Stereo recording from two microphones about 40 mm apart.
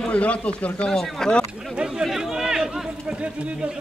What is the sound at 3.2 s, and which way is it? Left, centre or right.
Speech, right.